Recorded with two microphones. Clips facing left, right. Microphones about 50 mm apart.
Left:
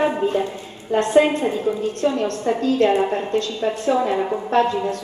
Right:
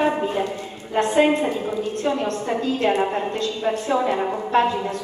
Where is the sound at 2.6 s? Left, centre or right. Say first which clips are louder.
Left 3 dB; right.